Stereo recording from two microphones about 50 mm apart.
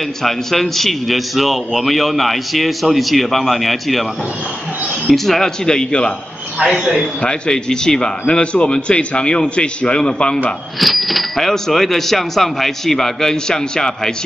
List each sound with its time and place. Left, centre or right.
0.2 s a man's voice: centre
5.0 s speech: centre
7.2 s a man's voice: centre
10.8 s speech: centre